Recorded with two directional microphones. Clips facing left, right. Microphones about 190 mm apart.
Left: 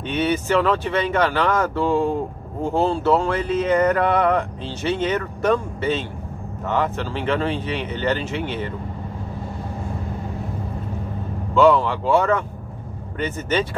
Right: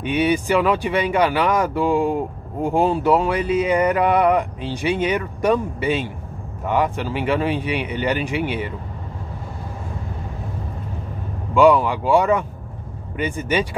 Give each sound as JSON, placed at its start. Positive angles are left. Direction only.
{"t": 0.0, "sound": "speech", "side_deg": -10}
{"t": 11.5, "sound": "speech", "side_deg": -10}